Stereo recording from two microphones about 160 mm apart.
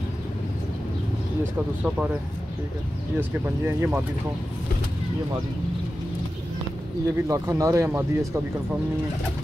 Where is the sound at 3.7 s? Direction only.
15° right (ahead or behind).